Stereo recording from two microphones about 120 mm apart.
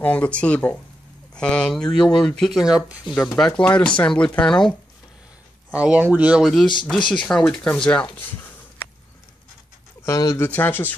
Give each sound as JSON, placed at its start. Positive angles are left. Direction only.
{"t": 0.0, "sound": "speech", "side_deg": 10}
{"t": 3.3, "sound": "speech", "side_deg": 5}
{"t": 5.7, "sound": "speech", "side_deg": -10}
{"t": 7.0, "sound": "speech", "side_deg": 40}
{"t": 7.2, "sound": "speech", "side_deg": 5}
{"t": 10.0, "sound": "speech", "side_deg": 25}
{"t": 10.5, "sound": "speech", "side_deg": 15}